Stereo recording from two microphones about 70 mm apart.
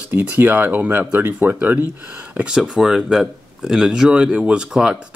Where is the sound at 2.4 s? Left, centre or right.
Centre.